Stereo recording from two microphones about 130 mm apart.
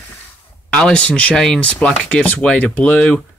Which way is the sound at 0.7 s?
10° left (ahead or behind).